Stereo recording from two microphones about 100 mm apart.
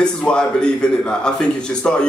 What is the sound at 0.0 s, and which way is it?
Speech, 10° left (ahead or behind).